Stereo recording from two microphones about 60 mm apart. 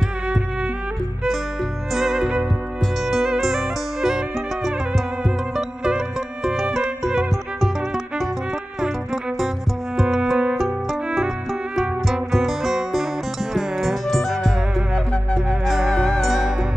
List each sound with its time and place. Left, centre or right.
2.0 s music: centre
5.9 s music: centre
8.8 s music: centre
11.7 s music: centre
15.6 s music: centre